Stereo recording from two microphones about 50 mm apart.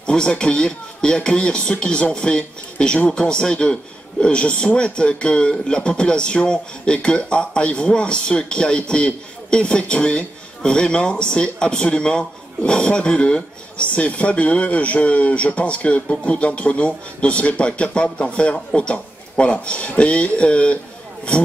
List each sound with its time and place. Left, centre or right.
0.0 s a man's voice: centre